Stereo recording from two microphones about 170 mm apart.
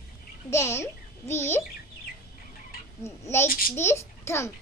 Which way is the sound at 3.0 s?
15° left (ahead or behind).